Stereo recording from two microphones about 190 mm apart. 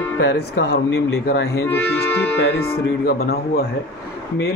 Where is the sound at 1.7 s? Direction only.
10° left (ahead or behind).